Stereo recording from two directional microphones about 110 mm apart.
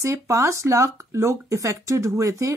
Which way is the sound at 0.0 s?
25° right (ahead or behind).